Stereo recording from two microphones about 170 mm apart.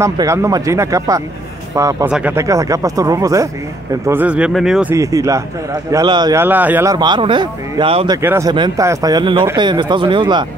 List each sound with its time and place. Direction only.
0.0 s a man's voice: 15° right (ahead or behind)
2.0 s a man's voice: 5° right (ahead or behind)
4.9 s a man's voice: 20° right (ahead or behind)
6.4 s a man's voice: 10° right (ahead or behind); by 8.2 s 30° right (ahead or behind)
8.2 s a man's voice: 15° right (ahead or behind)